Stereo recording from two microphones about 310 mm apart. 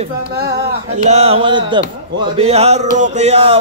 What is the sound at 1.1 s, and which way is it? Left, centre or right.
Music, centre.